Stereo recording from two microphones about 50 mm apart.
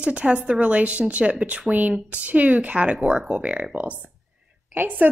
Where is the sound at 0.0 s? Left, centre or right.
Right.